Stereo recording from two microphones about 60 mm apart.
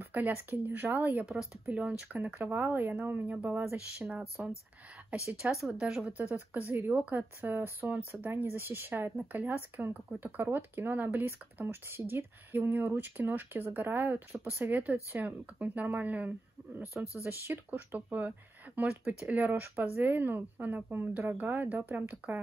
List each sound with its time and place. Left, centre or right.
0.0 s speech: right
1.7 s speech: right
5.1 s speech: centre
6.1 s speech: right
6.7 s speech: right
17.2 s speech: right